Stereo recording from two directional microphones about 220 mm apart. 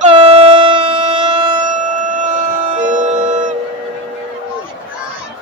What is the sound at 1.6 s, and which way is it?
Music, 35° right (ahead or behind).